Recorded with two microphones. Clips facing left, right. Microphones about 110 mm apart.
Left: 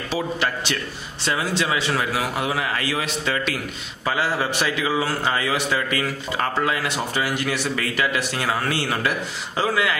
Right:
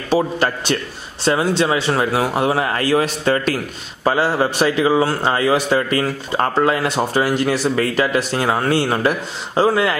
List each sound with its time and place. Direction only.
0.1 s a man's voice: 40° right (ahead or behind)